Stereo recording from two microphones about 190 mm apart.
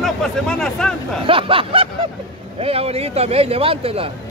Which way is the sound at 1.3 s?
30° right (ahead or behind).